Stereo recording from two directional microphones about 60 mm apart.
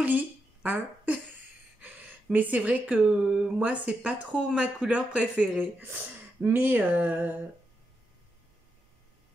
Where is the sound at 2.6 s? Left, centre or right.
Right.